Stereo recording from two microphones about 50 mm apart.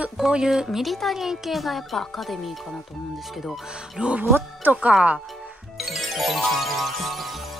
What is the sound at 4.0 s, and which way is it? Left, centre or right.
Speech, right.